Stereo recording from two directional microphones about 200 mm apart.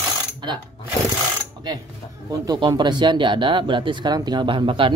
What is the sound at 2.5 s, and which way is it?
Speech, 20° right (ahead or behind).